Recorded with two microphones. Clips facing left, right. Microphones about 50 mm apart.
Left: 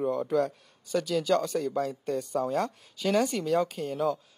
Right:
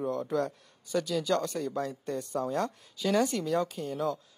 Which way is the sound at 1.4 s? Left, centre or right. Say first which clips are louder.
Left 3 dB; centre.